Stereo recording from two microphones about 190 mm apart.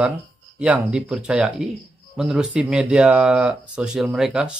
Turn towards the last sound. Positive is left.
turn(degrees=0)  # may be behind; listen again after turning